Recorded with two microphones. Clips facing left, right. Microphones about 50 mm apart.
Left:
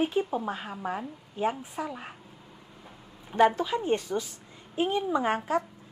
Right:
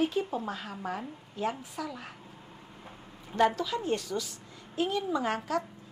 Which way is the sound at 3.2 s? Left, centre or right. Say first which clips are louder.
Left 4 dB; centre.